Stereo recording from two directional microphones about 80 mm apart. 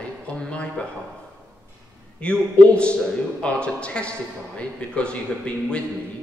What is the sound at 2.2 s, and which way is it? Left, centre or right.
Speech, centre.